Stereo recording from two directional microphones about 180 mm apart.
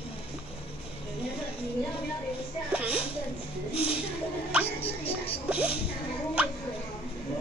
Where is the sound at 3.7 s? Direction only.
30° left (ahead or behind).